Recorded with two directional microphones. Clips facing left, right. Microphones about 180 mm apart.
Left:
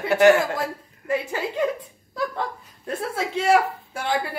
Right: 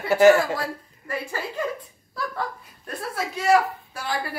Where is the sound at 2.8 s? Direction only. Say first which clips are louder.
Left 3 dB; 25° left (ahead or behind).